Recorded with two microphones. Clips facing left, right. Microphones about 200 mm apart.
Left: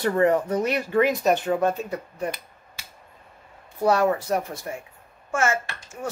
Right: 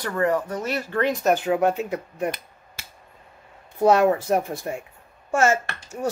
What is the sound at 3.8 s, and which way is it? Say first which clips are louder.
Speech: right 3 dB; 20° right (ahead or behind).